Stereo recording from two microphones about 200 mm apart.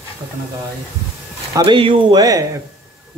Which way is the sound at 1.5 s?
25° right (ahead or behind).